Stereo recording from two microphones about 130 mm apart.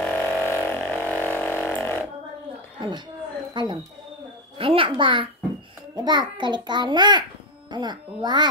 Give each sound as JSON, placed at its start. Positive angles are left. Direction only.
{"t": 0.0, "sound": "vehicle", "side_deg": 5}
{"t": 2.8, "sound": "a sound", "side_deg": -40}
{"t": 3.5, "sound": "a child's voice", "side_deg": -35}